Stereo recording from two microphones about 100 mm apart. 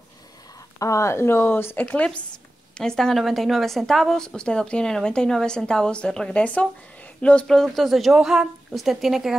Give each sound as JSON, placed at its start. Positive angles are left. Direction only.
{"t": 0.7, "sound": "speech", "side_deg": 30}
{"t": 1.9, "sound": "a woman's voice", "side_deg": 10}